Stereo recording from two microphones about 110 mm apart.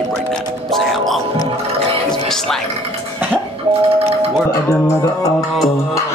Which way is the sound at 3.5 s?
60° right (ahead or behind).